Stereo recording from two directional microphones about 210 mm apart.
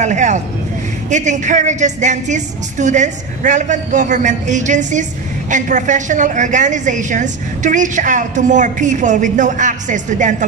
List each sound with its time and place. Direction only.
0.0 s a woman's voice: 35° right (ahead or behind)